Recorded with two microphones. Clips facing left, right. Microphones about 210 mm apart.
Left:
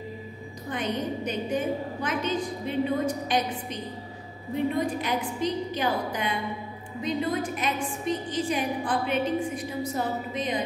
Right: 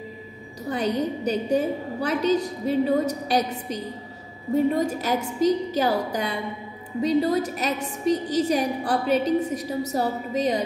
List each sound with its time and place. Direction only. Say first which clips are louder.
0.7 s a woman's voice: right 5 dB; 35° right (ahead or behind)